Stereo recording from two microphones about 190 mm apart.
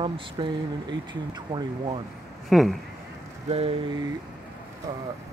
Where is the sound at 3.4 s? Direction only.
30° right (ahead or behind).